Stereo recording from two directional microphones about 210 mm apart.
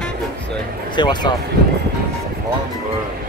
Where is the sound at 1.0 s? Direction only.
20° left (ahead or behind).